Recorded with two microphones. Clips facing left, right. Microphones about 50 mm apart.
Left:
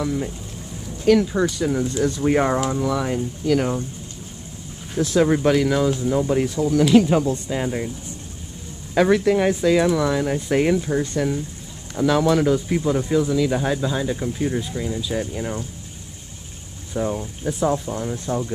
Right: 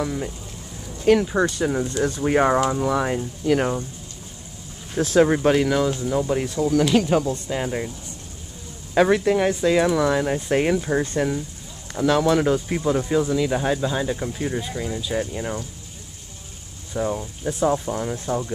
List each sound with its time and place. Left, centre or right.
0.0 s speech: centre
1.0 s speech: centre
2.9 s speech: centre
5.2 s speech: centre
8.9 s speech: centre
10.9 s speech: right
12.0 s speech: centre
16.9 s speech: centre
17.7 s speech: centre